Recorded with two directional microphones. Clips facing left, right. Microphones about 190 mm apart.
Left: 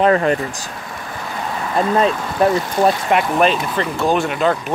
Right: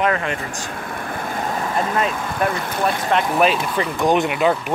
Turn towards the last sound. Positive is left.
turn(degrees=-10)  # may be behind; listen again after turning